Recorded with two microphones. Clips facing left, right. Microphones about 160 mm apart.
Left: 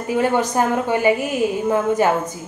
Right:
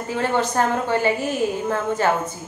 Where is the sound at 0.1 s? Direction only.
15° left (ahead or behind).